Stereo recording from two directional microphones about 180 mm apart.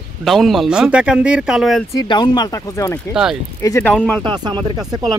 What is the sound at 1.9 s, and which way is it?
Speech, 25° left (ahead or behind).